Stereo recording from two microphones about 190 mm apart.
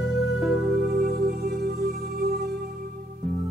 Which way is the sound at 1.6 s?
55° right (ahead or behind).